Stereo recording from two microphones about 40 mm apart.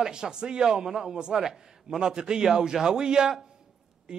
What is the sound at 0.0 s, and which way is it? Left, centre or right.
A man's voice, centre.